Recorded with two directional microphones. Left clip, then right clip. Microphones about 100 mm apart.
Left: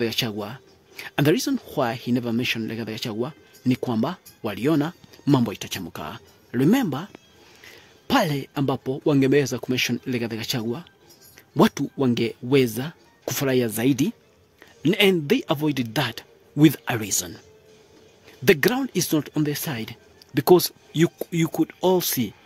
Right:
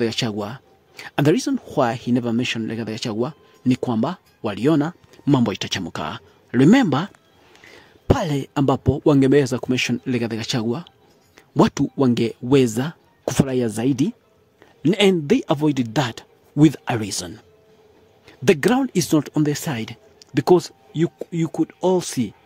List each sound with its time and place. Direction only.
0.0 s speech: 25° right (ahead or behind)
14.8 s speech: 25° right (ahead or behind)
18.2 s a sound: 25° right (ahead or behind)
18.7 s speech: 35° right (ahead or behind)
19.7 s a sound: 20° right (ahead or behind)
20.4 s speech: 5° right (ahead or behind)
20.9 s speech: 5° left (ahead or behind)
21.5 s speech: 10° right (ahead or behind)